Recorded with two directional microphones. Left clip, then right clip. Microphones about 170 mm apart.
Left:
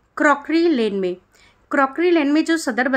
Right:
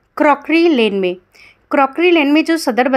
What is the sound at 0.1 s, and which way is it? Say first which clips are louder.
A woman's voice: right 4 dB; 15° right (ahead or behind).